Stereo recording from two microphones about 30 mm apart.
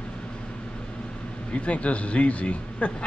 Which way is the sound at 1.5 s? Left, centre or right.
Left.